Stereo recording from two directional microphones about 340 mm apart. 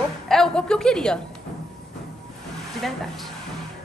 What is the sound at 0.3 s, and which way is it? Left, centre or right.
Speech, centre.